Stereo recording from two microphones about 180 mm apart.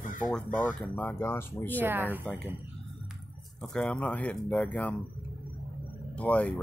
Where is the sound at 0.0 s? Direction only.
45° left (ahead or behind).